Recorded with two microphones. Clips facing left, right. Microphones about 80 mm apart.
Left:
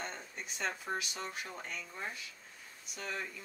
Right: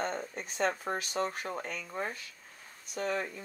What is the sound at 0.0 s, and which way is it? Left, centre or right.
Speech, right.